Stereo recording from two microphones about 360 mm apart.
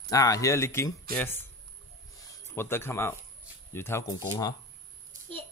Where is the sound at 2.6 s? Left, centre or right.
Centre.